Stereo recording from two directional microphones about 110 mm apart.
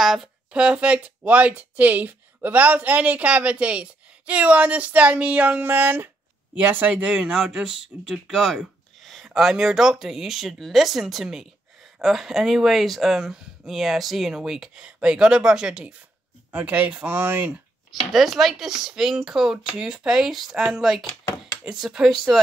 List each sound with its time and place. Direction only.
0.0 s speech: 5° right (ahead or behind); by 17.6 s 20° right (ahead or behind)
18.1 s speech: centre (ahead or behind)